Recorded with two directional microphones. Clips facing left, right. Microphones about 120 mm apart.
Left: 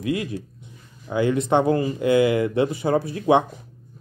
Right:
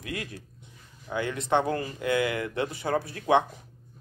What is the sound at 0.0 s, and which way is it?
Speech, 20° left (ahead or behind).